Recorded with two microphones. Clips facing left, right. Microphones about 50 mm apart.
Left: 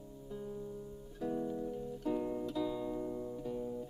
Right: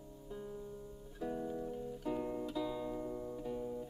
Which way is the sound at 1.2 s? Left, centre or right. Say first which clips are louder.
Left 3 dB; centre.